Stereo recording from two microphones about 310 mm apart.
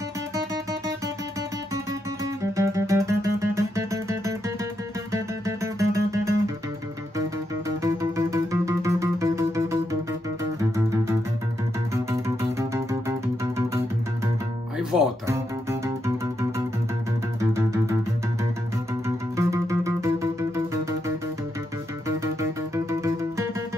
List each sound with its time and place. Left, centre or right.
2.4 s music: centre
7.8 s music: centre
19.0 s music: centre
22.0 s music: centre